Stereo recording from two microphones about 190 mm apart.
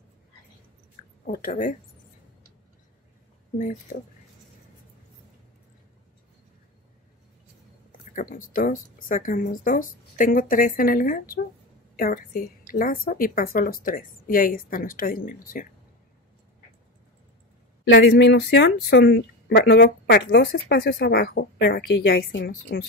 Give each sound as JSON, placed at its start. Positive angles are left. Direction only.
{"t": 1.2, "sound": "a woman's voice", "side_deg": 45}
{"t": 3.5, "sound": "a woman's voice", "side_deg": 45}
{"t": 8.1, "sound": "a woman's voice", "side_deg": 45}
{"t": 18.0, "sound": "speech", "side_deg": 65}